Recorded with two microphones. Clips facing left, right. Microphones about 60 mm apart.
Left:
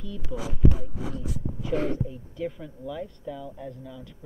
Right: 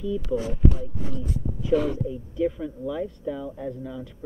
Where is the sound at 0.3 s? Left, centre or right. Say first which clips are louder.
Right 7 dB; centre.